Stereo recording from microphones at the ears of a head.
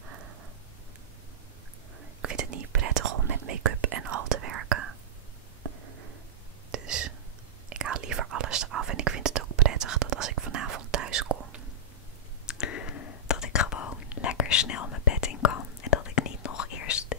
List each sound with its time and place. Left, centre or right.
2.2 s whispering: right
5.6 s a sound: right
6.7 s whispering: right
12.4 s whispering: left